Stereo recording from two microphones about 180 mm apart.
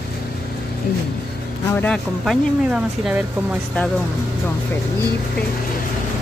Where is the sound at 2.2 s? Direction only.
5° right (ahead or behind).